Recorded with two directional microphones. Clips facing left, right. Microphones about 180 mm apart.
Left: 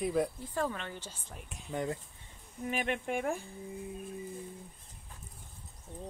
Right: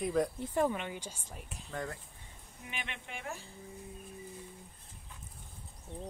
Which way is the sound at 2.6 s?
45° left (ahead or behind).